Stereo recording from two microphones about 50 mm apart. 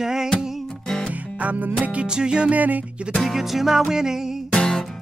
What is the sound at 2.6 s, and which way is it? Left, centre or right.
Music, right.